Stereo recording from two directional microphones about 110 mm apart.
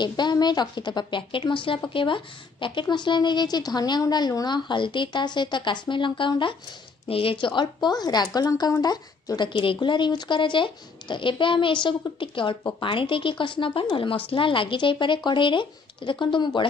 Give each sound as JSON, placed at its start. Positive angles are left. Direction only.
{"t": 0.0, "sound": "a woman's voice", "side_deg": 40}